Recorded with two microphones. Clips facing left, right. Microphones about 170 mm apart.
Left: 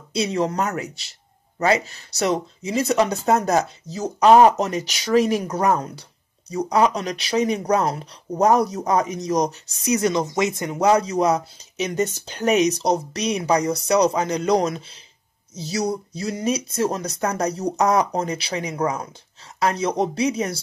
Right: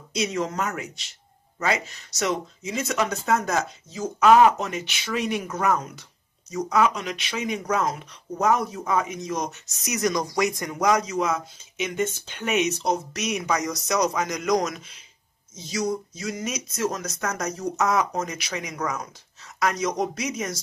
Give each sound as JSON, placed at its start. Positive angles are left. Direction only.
{"t": 0.1, "sound": "speech", "side_deg": 30}